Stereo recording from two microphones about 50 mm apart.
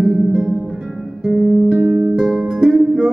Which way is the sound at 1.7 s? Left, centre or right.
Right.